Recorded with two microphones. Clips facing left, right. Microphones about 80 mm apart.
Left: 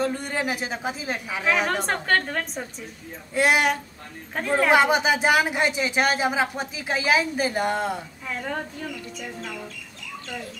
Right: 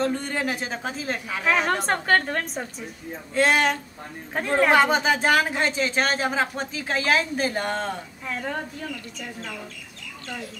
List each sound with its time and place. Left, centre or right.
0.0 s a woman's voice: centre
3.3 s speech: centre
4.4 s a woman's voice: centre
4.7 s speech: centre
8.4 s a woman's voice: centre